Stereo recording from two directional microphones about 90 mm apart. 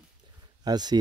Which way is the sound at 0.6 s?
50° right (ahead or behind).